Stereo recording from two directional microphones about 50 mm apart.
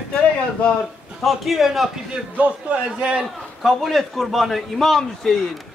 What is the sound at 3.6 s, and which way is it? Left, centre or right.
A man's voice, centre.